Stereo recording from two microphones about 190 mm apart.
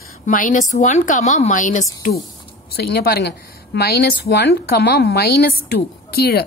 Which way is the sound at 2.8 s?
55° left (ahead or behind).